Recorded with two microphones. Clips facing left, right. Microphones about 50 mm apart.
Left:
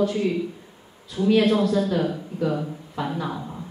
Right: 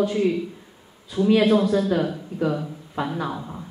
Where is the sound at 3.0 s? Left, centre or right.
Centre.